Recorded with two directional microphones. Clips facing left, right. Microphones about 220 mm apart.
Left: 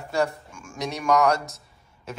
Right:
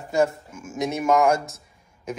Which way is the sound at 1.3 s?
Centre (ahead or behind).